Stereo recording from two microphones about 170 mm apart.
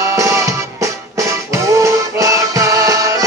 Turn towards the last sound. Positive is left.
turn(degrees=-20)  # may be behind; listen again after turning